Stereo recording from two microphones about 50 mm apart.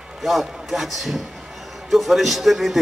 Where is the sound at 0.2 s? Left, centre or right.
Centre.